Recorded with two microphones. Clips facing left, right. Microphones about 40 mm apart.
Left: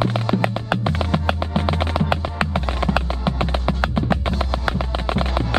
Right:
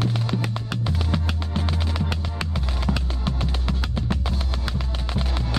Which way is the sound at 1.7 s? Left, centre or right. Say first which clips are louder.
Left 7 dB; left.